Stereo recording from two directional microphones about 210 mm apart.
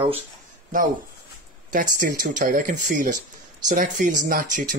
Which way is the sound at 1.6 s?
40° right (ahead or behind).